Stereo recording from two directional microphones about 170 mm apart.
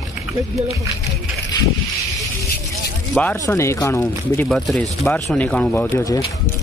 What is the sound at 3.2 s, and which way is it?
Speech, 15° left (ahead or behind).